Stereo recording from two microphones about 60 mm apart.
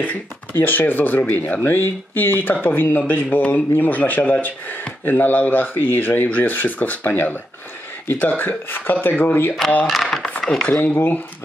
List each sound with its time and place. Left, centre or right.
0.0 s speech: left
9.8 s speech: centre
10.7 s speech: left